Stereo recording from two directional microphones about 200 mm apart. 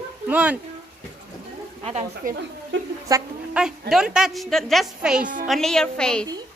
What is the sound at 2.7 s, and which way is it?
Speech, 65° right (ahead or behind).